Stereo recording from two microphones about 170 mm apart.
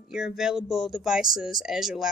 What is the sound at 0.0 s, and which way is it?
Speech, 5° right (ahead or behind).